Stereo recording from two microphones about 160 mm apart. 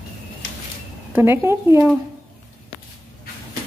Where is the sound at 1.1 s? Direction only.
15° right (ahead or behind).